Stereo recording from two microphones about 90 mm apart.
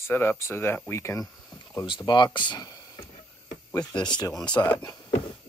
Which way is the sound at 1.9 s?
55° left (ahead or behind).